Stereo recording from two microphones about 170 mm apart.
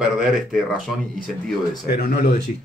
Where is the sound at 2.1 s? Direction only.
60° left (ahead or behind).